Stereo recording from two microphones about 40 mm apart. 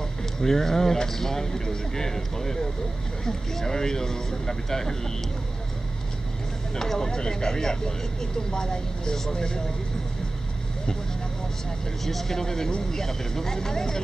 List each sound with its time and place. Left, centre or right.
0.4 s speech: centre
6.7 s speech: centre
12.0 s speech: centre